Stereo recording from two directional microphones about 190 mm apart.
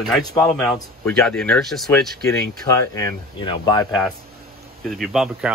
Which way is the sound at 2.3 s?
15° left (ahead or behind).